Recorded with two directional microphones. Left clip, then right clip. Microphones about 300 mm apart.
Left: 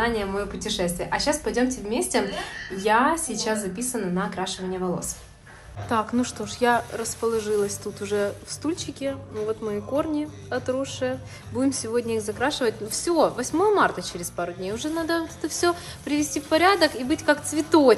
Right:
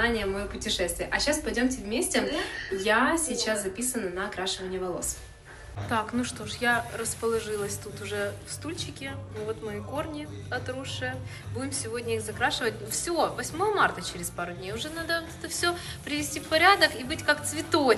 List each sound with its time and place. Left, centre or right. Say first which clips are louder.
0.7 s a woman's voice: left 1 dB; left
5.9 s a woman's voice: left 4 dB; centre